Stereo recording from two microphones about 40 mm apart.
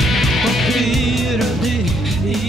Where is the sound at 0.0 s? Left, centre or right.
Centre.